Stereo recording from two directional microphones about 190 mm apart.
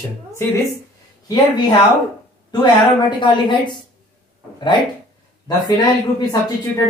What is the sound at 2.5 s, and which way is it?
Speech, 25° left (ahead or behind).